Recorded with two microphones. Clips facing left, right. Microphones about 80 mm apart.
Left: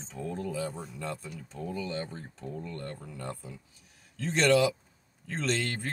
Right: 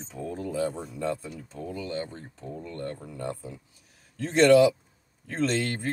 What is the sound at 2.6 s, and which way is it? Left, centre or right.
Speech, right.